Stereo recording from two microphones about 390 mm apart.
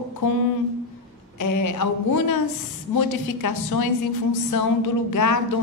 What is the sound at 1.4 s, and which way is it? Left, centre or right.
A woman's voice, left.